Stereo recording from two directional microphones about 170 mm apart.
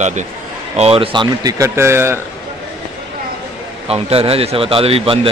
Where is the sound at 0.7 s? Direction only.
35° right (ahead or behind); by 2.1 s 15° right (ahead or behind).